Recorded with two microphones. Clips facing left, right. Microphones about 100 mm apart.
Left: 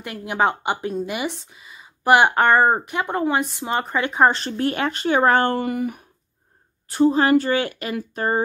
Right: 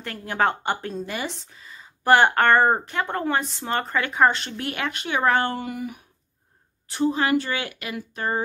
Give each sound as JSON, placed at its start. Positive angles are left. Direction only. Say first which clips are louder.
{"t": 0.0, "sound": "a woman's voice", "louder": "left 2 dB", "side_deg": 15}
{"t": 4.3, "sound": "speech", "louder": "left 5 dB", "side_deg": 35}
{"t": 6.9, "sound": "speech", "louder": "left 5 dB", "side_deg": 40}